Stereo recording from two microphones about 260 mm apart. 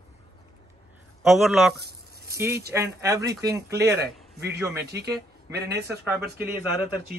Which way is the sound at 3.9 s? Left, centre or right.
Right.